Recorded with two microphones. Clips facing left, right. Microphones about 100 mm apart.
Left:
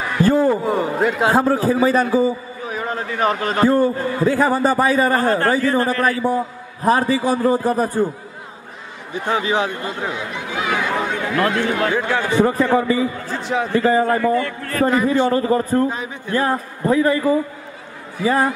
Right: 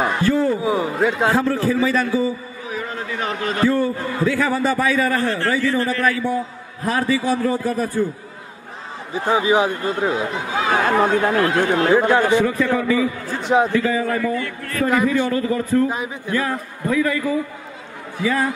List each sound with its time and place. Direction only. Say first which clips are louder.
0.2 s a sound: left 6 dB; 45° left (ahead or behind)
0.6 s a man's voice: even; centre (ahead or behind)
1.3 s a man's voice: left 2 dB; 45° left (ahead or behind)
9.3 s speech: right 3 dB; 15° right (ahead or behind)
9.8 s speech: right 5 dB; 35° right (ahead or behind)
11.8 s speech: right 4 dB; 20° right (ahead or behind)
12.3 s a man's voice: left 1 dB; 40° left (ahead or behind)
13.3 s speech: right 4 dB; 20° right (ahead or behind)
13.7 s a man's voice: left 4 dB; 45° left (ahead or behind)
14.9 s a man's voice: left 1 dB; 30° left (ahead or behind)